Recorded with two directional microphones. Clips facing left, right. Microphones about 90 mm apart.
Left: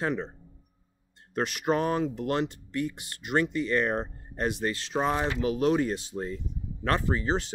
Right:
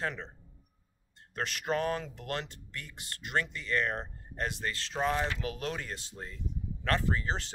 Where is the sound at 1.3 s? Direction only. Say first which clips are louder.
Left 6 dB; 20° left (ahead or behind).